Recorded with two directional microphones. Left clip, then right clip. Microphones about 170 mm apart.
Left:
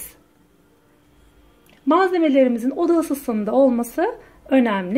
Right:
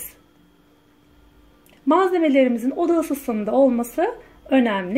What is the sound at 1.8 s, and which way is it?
Speech, centre (ahead or behind).